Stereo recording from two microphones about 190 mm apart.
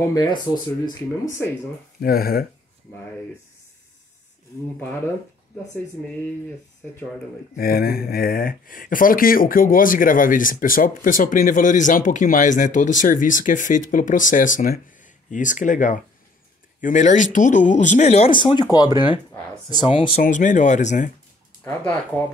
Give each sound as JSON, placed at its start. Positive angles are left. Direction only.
{"t": 0.0, "sound": "speech", "side_deg": 20}
{"t": 2.0, "sound": "speech", "side_deg": 50}
{"t": 7.5, "sound": "speech", "side_deg": 50}
{"t": 18.3, "sound": "speech", "side_deg": 25}
{"t": 20.2, "sound": "speech", "side_deg": 40}
{"t": 21.6, "sound": "speech", "side_deg": 10}